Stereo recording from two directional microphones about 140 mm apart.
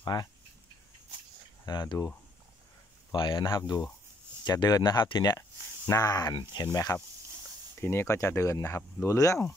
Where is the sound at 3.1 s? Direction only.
35° left (ahead or behind).